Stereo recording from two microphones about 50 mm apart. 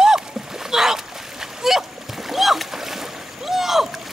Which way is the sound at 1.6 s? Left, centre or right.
Centre.